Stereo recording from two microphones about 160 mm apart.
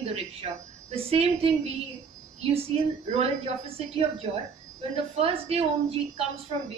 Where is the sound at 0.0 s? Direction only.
40° right (ahead or behind).